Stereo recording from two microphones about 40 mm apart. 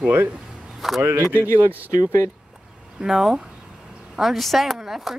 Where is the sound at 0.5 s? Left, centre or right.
Centre.